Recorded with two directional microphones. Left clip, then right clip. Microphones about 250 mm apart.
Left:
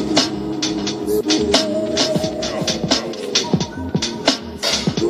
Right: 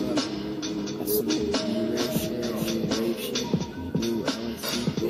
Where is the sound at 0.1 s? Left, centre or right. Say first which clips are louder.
Left 10 dB; left.